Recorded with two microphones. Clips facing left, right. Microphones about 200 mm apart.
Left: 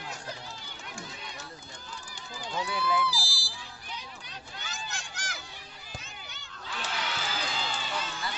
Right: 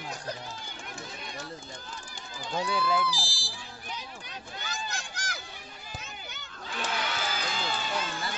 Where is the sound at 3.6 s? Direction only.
50° right (ahead or behind).